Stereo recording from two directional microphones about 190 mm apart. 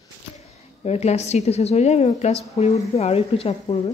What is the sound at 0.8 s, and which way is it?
A woman's voice, 35° left (ahead or behind).